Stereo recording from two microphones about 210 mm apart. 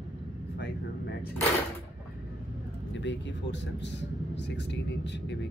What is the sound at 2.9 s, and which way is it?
Speech, 60° left (ahead or behind).